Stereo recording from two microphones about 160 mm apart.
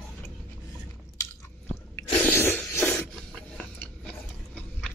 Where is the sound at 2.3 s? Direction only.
15° left (ahead or behind).